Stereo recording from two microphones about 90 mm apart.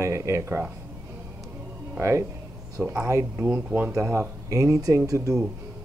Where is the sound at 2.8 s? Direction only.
20° right (ahead or behind).